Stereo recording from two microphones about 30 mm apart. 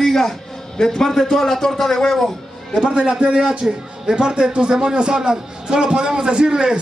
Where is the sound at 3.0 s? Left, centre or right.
Right.